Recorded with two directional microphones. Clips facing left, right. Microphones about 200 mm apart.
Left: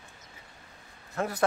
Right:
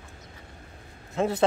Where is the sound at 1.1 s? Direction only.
25° right (ahead or behind).